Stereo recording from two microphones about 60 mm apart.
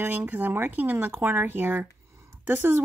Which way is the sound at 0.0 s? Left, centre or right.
Right.